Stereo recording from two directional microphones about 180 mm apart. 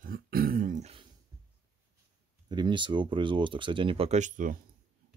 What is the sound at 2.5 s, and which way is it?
Speech, 25° right (ahead or behind).